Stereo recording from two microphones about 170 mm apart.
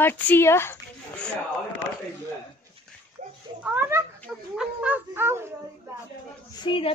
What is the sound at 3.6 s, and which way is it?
Speech, 10° right (ahead or behind).